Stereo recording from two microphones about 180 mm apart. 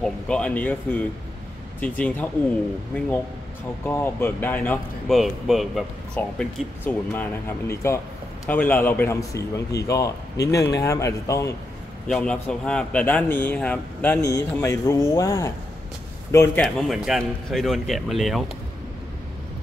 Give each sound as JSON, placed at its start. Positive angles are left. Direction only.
{"t": 0.0, "sound": "speech", "side_deg": 5}
{"t": 3.8, "sound": "speech", "side_deg": 10}
{"t": 12.1, "sound": "a man's voice", "side_deg": 5}
{"t": 16.6, "sound": "a man's voice", "side_deg": 0}